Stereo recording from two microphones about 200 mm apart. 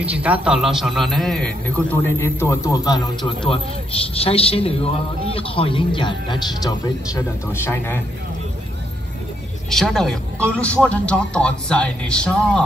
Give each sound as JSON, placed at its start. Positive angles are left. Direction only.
{"t": 0.0, "sound": "a man's voice", "side_deg": -5}
{"t": 7.5, "sound": "a man's voice", "side_deg": 10}
{"t": 9.7, "sound": "a man's voice", "side_deg": 0}